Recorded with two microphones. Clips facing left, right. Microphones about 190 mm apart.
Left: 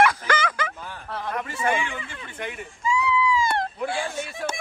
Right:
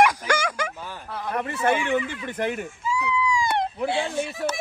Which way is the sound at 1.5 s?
60° right (ahead or behind).